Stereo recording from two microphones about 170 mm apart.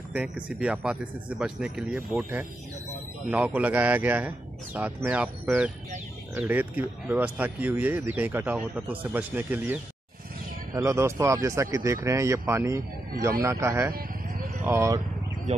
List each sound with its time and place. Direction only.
0.1 s speech: 10° right (ahead or behind)
2.0 s speech: 15° right (ahead or behind)